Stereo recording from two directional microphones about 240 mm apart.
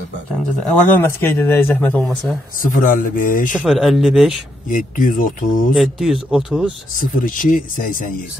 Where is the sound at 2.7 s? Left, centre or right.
Left.